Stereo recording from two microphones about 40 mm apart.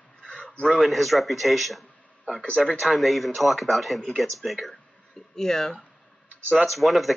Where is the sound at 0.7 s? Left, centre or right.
Centre.